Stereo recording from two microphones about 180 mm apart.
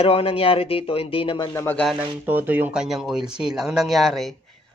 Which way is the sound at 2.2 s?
10° right (ahead or behind).